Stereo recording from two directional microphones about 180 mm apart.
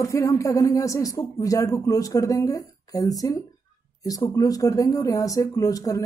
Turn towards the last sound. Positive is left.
turn(degrees=20)  # may be behind; listen again after turning